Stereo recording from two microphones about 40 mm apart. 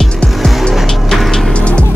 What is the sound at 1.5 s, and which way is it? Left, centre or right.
Music, left.